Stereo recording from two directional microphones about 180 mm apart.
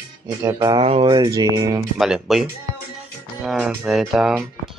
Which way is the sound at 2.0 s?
Centre (ahead or behind).